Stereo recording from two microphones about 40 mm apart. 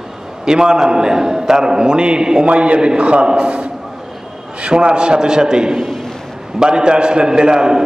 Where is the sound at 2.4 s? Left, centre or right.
Right.